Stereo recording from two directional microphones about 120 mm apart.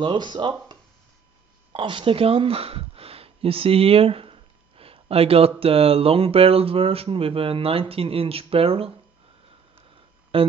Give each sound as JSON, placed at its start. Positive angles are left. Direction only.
{"t": 0.0, "sound": "speech", "side_deg": -40}
{"t": 10.3, "sound": "speech", "side_deg": -55}